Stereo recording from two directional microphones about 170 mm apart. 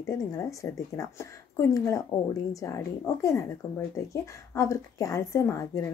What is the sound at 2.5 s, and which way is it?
A woman's voice, 20° left (ahead or behind).